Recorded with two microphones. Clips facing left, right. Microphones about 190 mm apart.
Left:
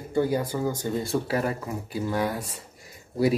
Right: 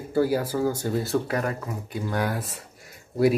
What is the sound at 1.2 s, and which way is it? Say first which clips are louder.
Speech: left 1 dB; 35° left (ahead or behind).